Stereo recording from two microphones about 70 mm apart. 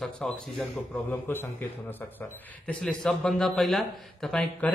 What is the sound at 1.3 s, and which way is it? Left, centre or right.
Speech, left.